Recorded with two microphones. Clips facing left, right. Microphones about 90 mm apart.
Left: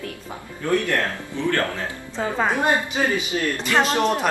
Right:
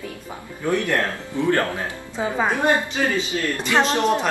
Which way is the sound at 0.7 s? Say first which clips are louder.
Even; 15° right (ahead or behind).